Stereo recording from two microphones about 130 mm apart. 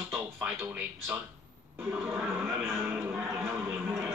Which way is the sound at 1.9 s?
15° right (ahead or behind).